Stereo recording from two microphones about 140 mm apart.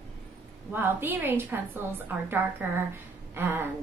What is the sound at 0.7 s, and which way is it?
A woman's voice, 15° right (ahead or behind).